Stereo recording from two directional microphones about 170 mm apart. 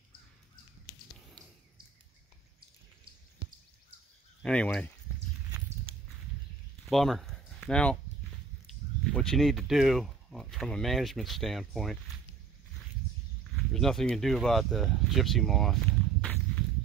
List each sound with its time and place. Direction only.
4.4 s speech: 5° left (ahead or behind)
5.9 s walk: 30° right (ahead or behind)
6.9 s speech: centre (ahead or behind)
9.1 s speech: 5° left (ahead or behind)
13.7 s speech: centre (ahead or behind)